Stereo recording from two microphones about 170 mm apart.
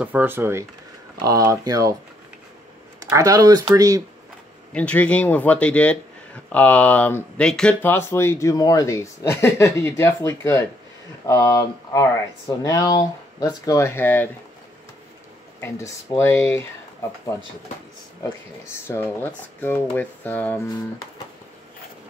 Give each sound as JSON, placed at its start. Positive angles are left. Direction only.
{"t": 0.0, "sound": "speech", "side_deg": -10}
{"t": 3.0, "sound": "speech", "side_deg": -20}
{"t": 4.7, "sound": "speech", "side_deg": 5}
{"t": 15.6, "sound": "speech", "side_deg": 15}
{"t": 18.7, "sound": "speech", "side_deg": 15}